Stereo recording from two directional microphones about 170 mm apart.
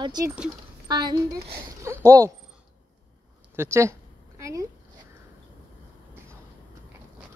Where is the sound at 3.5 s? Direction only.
15° right (ahead or behind).